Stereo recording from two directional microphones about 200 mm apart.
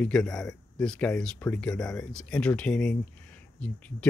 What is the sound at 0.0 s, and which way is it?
Speech, 5° left (ahead or behind).